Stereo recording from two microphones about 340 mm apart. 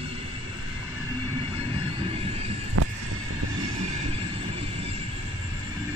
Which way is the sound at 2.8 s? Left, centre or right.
Right.